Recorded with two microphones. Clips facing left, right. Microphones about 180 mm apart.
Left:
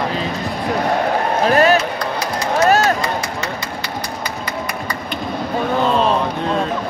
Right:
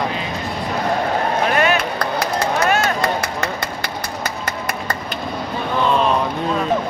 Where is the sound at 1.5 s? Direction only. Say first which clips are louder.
Left 4 dB; 35° left (ahead or behind).